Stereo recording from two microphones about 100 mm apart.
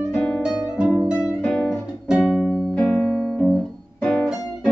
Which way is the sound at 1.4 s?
5° left (ahead or behind).